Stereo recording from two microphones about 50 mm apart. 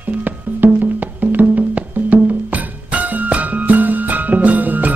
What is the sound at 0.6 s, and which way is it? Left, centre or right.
Music, right.